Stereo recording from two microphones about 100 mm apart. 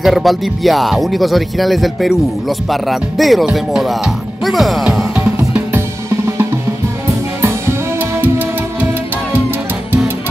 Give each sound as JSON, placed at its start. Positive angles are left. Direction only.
{"t": 0.0, "sound": "speech", "side_deg": 0}
{"t": 4.8, "sound": "music", "side_deg": -15}
{"t": 5.8, "sound": "drum kit", "side_deg": -25}